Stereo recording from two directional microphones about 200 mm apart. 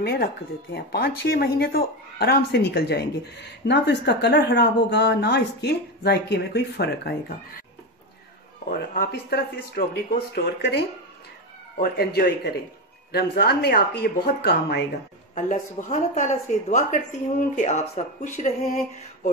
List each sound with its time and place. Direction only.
0.0 s speech: 50° left (ahead or behind)
8.6 s speech: 45° left (ahead or behind)
11.8 s speech: 50° left (ahead or behind)
15.3 s speech: 40° left (ahead or behind)